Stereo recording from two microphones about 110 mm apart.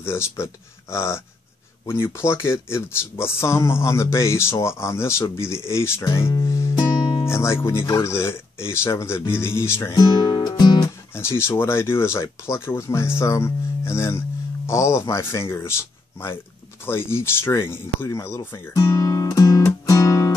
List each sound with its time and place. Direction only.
0.0 s speech: 25° left (ahead or behind)
6.4 s music: 25° left (ahead or behind)
6.7 s music: 40° left (ahead or behind)
7.2 s speech: 25° left (ahead or behind)
9.9 s music: 40° left (ahead or behind)
11.1 s speech: 20° left (ahead or behind)
18.8 s guitar: 30° left (ahead or behind)